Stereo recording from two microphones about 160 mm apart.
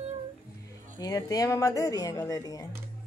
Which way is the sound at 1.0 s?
20° left (ahead or behind).